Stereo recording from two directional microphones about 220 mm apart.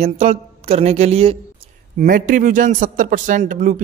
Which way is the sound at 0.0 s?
30° right (ahead or behind).